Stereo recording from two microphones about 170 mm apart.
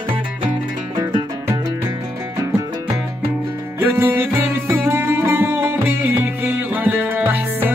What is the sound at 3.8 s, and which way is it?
Music, 15° right (ahead or behind).